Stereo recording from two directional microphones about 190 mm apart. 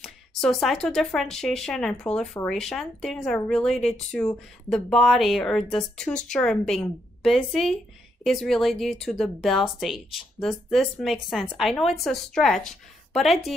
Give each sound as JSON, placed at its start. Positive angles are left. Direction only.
{"t": 0.0, "sound": "a woman's voice", "side_deg": 0}